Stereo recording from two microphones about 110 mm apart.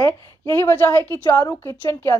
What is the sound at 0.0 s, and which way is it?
A woman's voice, 20° left (ahead or behind).